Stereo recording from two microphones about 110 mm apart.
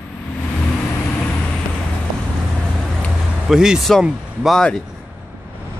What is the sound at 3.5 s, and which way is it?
Speech, 5° right (ahead or behind).